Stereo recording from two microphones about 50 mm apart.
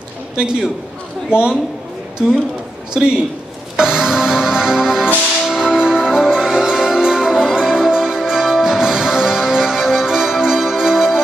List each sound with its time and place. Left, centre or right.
0.4 s a man's voice: centre
2.9 s a man's voice: centre
3.7 s music: centre